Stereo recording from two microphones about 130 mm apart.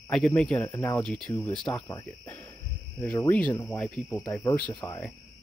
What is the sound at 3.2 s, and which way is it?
Speech, 10° left (ahead or behind).